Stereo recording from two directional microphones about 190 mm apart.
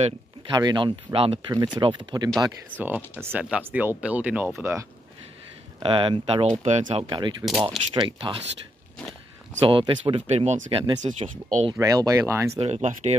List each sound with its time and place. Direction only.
0.5 s speech: 20° right (ahead or behind)
3.2 s speech: 10° right (ahead or behind)
5.8 s speech: 25° right (ahead or behind)
9.6 s speech: 25° right (ahead or behind)
11.1 s speech: 40° right (ahead or behind)
11.8 s speech: 15° right (ahead or behind)
12.5 s speech: 35° right (ahead or behind)